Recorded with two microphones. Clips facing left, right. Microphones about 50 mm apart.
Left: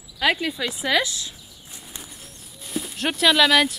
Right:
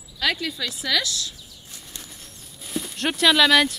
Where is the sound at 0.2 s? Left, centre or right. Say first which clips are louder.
Left 3 dB; left.